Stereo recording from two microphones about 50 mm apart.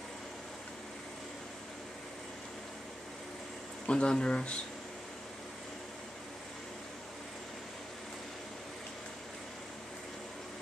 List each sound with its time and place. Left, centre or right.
3.8 s speech: left